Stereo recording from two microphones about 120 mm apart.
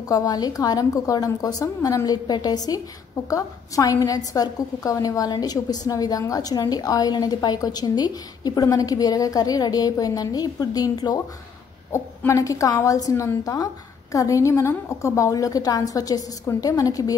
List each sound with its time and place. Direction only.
0.1 s a woman's voice: 35° left (ahead or behind)